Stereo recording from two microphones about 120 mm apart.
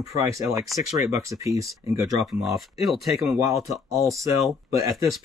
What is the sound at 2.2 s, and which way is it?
Speech, centre (ahead or behind).